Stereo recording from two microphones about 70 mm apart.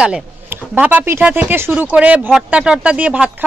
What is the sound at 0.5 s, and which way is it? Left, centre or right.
Speech, right.